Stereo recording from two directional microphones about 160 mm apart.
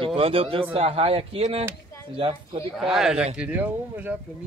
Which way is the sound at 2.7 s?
Centre (ahead or behind).